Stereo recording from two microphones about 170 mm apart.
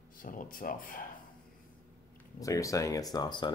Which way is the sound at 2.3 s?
20° left (ahead or behind).